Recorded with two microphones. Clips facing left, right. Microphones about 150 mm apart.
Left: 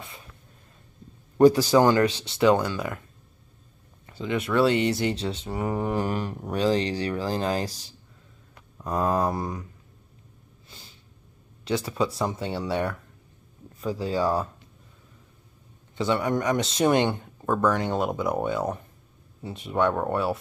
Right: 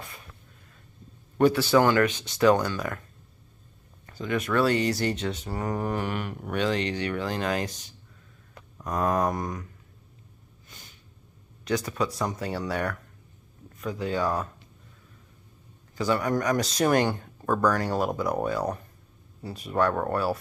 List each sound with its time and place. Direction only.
1.4 s speech: 40° left (ahead or behind); by 3.0 s 20° left (ahead or behind)
4.1 s speech: 25° left (ahead or behind)
5.7 s a sound: 10° left (ahead or behind)
5.9 s speech: 35° left (ahead or behind)
10.7 s snort: 30° left (ahead or behind)
11.7 s speech: 30° left (ahead or behind)
15.9 s speech: 25° left (ahead or behind)
17.1 s speech: centre (ahead or behind)
17.7 s speech: 20° left (ahead or behind)